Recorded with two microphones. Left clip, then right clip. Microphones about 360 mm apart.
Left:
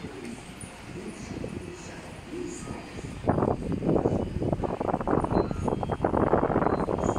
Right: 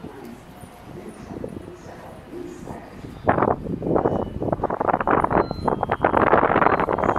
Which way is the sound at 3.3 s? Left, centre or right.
Right.